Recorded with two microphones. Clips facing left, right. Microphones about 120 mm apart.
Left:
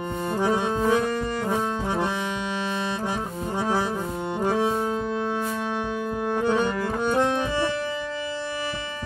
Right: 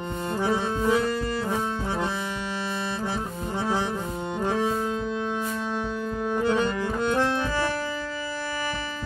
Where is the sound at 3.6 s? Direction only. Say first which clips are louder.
Left 2 dB; 15° left (ahead or behind).